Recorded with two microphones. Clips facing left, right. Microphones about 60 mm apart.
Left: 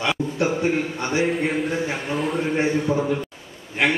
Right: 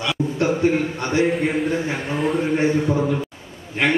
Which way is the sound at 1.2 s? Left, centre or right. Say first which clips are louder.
Right 3 dB; centre.